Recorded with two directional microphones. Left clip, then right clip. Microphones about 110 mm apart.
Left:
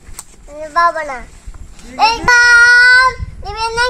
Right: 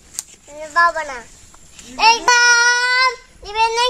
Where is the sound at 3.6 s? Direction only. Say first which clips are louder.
Left 1 dB; 20° right (ahead or behind).